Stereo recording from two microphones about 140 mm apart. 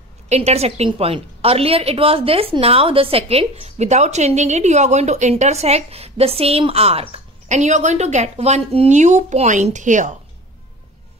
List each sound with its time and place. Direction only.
0.3 s a woman's voice: 50° right (ahead or behind)